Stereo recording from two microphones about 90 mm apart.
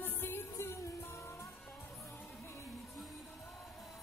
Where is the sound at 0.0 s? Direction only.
25° left (ahead or behind).